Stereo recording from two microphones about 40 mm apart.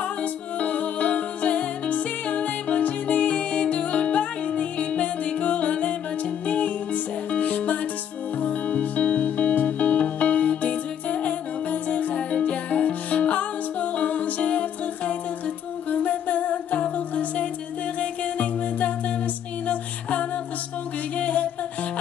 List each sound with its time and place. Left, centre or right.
0.2 s music: left